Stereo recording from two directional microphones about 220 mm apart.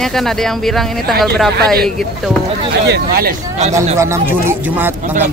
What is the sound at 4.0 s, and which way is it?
Speech, 10° right (ahead or behind).